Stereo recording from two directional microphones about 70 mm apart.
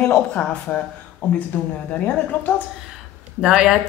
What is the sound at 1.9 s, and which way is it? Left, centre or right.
Speech, left.